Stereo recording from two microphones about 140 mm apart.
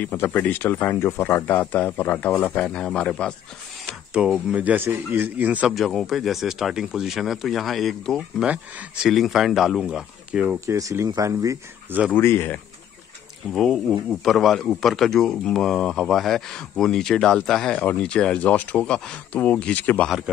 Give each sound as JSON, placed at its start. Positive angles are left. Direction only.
{"t": 0.0, "sound": "speech", "side_deg": 10}
{"t": 4.1, "sound": "speech", "side_deg": -5}
{"t": 5.8, "sound": "a man's voice", "side_deg": 0}
{"t": 10.7, "sound": "speech", "side_deg": -20}
{"t": 12.1, "sound": "speech", "side_deg": 15}
{"t": 13.5, "sound": "a man's voice", "side_deg": 0}